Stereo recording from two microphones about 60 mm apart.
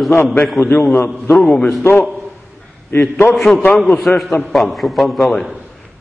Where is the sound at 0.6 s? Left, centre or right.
Left.